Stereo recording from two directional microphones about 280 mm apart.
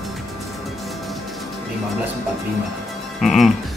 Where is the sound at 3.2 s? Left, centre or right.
Centre.